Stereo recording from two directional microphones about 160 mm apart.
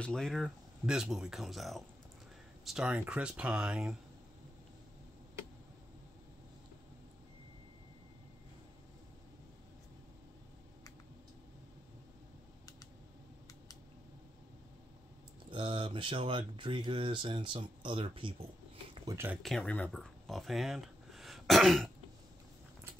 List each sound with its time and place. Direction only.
0.0 s speech: 5° left (ahead or behind)
15.5 s speech: 30° right (ahead or behind)
19.4 s speech: 5° left (ahead or behind)